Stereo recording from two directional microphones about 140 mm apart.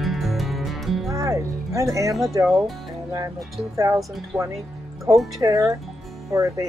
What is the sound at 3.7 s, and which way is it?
Speech, 25° right (ahead or behind).